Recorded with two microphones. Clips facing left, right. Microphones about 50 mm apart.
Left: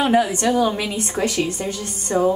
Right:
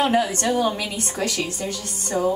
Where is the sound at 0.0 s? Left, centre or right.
Centre.